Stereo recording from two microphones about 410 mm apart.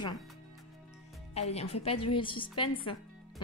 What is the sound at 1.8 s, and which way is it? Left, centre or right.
Speech, centre.